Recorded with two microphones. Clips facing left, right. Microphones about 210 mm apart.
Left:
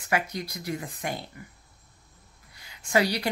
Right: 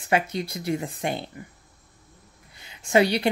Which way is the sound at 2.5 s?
25° right (ahead or behind).